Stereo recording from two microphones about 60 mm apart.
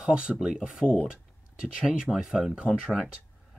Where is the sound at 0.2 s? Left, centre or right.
Right.